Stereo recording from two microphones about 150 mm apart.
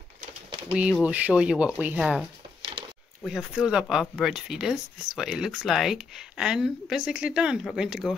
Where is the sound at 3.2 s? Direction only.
5° right (ahead or behind).